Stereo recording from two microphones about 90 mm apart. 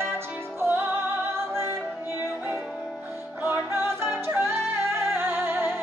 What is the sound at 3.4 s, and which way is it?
Music, 25° right (ahead or behind).